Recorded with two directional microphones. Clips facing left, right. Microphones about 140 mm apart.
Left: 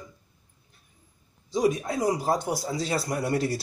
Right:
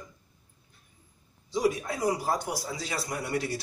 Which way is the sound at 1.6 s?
20° left (ahead or behind).